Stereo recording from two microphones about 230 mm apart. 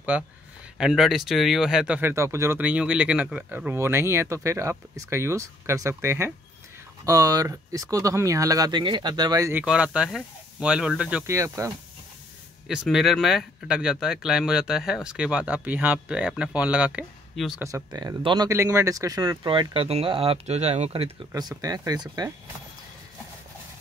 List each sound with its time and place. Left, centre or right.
0.1 s speech: centre
12.6 s speech: centre
17.6 s speech: centre
21.3 s speech: centre